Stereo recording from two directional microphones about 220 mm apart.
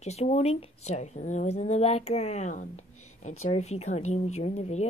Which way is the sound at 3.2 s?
30° left (ahead or behind).